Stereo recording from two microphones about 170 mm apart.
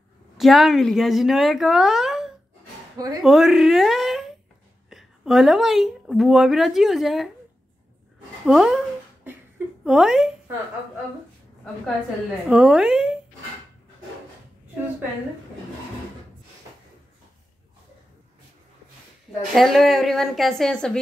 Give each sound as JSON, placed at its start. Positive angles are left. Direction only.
{"t": 0.4, "sound": "speech", "side_deg": 0}
{"t": 3.0, "sound": "speech", "side_deg": -25}
{"t": 3.3, "sound": "a woman's voice", "side_deg": 0}
{"t": 8.5, "sound": "a sound", "side_deg": -5}
{"t": 9.8, "sound": "speech", "side_deg": 0}
{"t": 12.4, "sound": "speech", "side_deg": -5}
{"t": 19.5, "sound": "speech", "side_deg": 0}